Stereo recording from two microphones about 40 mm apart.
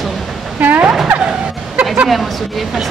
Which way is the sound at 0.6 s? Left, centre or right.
Right.